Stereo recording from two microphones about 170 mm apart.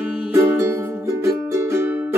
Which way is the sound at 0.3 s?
15° right (ahead or behind).